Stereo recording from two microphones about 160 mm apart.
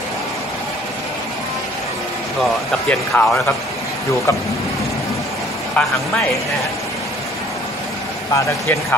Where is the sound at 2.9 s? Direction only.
10° left (ahead or behind).